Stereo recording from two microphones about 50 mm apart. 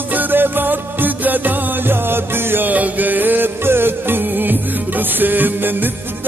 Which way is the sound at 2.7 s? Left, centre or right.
Right.